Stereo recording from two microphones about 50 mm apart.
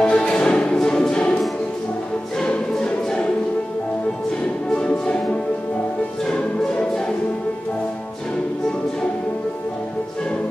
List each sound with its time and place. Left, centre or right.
0.0 s music: centre
2.4 s music: centre
4.6 s music: centre